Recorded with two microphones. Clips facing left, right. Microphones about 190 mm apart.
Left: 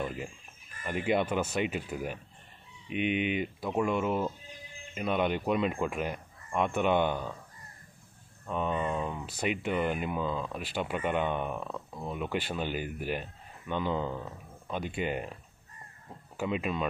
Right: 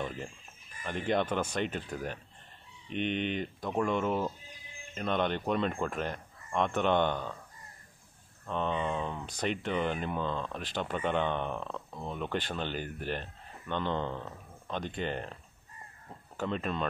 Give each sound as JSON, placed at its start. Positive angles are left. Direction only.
{"t": 0.0, "sound": "speech", "side_deg": 5}
{"t": 8.5, "sound": "speech", "side_deg": 5}
{"t": 16.3, "sound": "speech", "side_deg": 10}